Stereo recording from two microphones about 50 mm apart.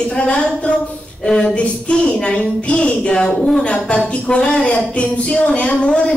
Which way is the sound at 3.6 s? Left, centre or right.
Left.